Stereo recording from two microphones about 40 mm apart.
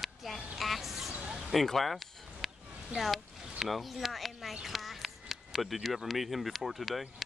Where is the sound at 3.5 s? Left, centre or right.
Centre.